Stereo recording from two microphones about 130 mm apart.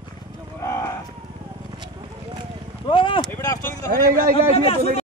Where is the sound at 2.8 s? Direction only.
40° left (ahead or behind).